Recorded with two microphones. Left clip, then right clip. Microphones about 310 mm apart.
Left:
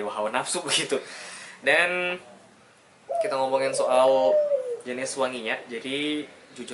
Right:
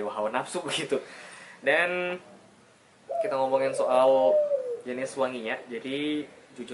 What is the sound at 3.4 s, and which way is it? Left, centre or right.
Speech, centre.